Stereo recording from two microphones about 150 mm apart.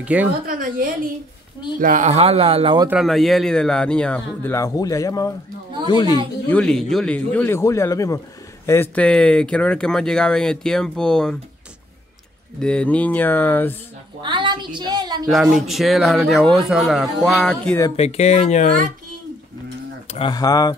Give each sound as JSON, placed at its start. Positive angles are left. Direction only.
{"t": 0.0, "sound": "a woman's voice", "side_deg": -10}
{"t": 0.5, "sound": "a woman's voice", "side_deg": -70}
{"t": 1.8, "sound": "speech", "side_deg": -55}
{"t": 2.9, "sound": "speech", "side_deg": 0}
{"t": 4.5, "sound": "speech", "side_deg": 20}
{"t": 6.5, "sound": "speech", "side_deg": 5}
{"t": 8.9, "sound": "speech", "side_deg": 5}
{"t": 12.5, "sound": "speech", "side_deg": 5}
{"t": 14.2, "sound": "a woman's voice", "side_deg": -30}
{"t": 15.2, "sound": "speech", "side_deg": 0}
{"t": 17.9, "sound": "speech", "side_deg": 45}
{"t": 20.1, "sound": "a sound", "side_deg": 35}
{"t": 20.3, "sound": "speech", "side_deg": 25}